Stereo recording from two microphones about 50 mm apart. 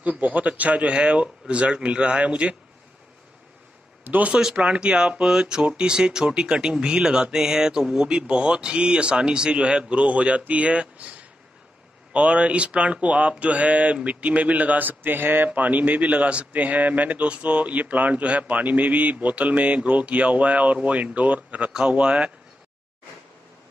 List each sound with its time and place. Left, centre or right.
0.0 s speech: right
4.1 s speech: right
4.4 s speech: centre; by 15.5 s right
15.5 s speech: right
21.7 s speech: centre